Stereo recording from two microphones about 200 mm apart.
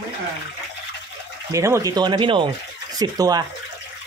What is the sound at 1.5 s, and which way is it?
Speech, 15° right (ahead or behind).